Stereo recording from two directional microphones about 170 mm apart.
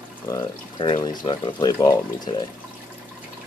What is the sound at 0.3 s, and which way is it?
Speech, 25° left (ahead or behind).